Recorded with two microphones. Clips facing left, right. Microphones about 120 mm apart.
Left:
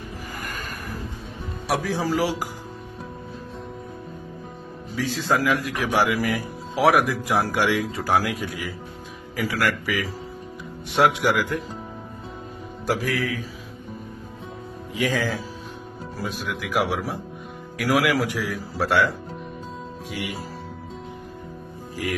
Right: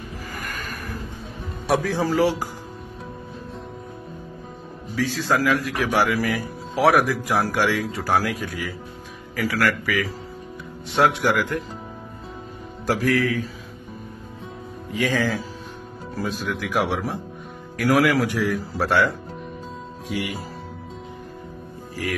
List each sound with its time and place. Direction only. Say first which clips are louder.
1.7 s a man's voice: right 3 dB; centre (ahead or behind)
4.9 s a man's voice: right 1 dB; 20° left (ahead or behind)
11.1 s a man's voice: even; 5° left (ahead or behind)
12.8 s speech: right 4 dB; centre (ahead or behind)
15.0 s speech: right 2 dB; centre (ahead or behind)